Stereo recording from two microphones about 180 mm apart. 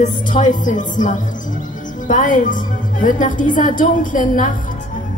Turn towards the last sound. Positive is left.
turn(degrees=45)  # may be behind; listen again after turning